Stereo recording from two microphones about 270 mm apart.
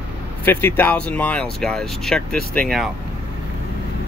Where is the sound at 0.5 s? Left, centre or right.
Centre.